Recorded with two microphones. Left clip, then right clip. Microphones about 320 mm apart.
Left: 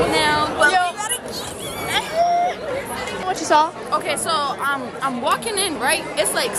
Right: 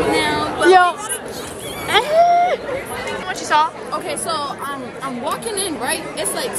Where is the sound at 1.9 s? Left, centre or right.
Centre.